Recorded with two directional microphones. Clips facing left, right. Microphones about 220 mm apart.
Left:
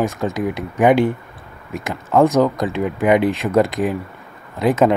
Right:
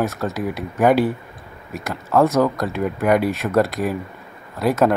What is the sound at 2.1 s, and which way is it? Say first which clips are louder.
Speech: left 2 dB; 15° left (ahead or behind).